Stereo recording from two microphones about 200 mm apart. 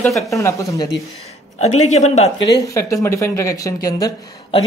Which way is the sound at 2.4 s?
20° left (ahead or behind).